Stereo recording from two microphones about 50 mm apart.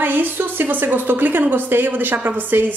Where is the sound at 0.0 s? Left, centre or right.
Right.